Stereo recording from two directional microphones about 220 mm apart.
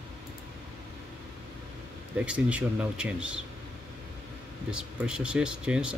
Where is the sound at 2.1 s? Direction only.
5° right (ahead or behind).